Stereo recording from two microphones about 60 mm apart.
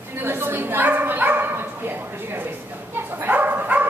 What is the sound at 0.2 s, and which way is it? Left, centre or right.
Bow-wow, right.